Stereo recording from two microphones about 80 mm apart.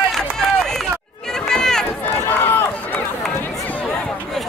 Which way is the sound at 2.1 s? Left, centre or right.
Left.